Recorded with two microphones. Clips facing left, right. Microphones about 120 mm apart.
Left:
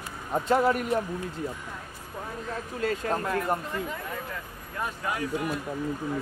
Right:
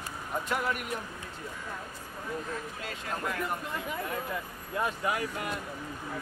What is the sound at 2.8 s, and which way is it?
Speech, 40° left (ahead or behind).